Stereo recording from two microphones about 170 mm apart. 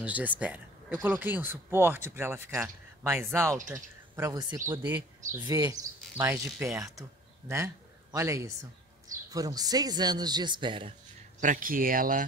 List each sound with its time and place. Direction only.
0.0 s speech: 10° right (ahead or behind)
4.6 s speech: 15° right (ahead or behind); by 11.0 s 30° right (ahead or behind)
11.4 s speech: 50° right (ahead or behind)